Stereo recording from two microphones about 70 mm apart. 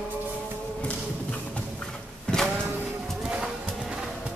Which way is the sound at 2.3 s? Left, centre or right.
Centre.